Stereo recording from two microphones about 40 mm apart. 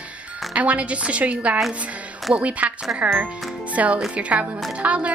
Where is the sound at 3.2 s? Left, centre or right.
Right.